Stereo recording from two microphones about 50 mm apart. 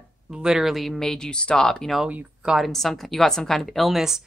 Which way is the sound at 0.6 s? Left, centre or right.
Centre.